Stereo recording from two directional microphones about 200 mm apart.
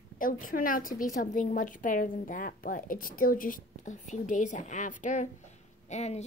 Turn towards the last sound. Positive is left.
turn(degrees=35)  # may be behind; listen again after turning